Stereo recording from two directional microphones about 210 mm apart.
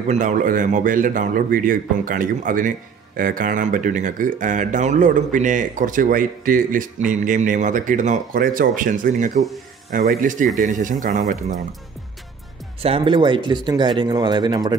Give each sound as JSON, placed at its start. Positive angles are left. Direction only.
{"t": 0.1, "sound": "speech", "side_deg": -35}
{"t": 12.8, "sound": "speech", "side_deg": -25}